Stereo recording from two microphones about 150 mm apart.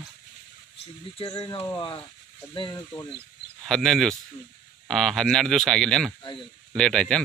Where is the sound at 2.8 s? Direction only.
20° left (ahead or behind).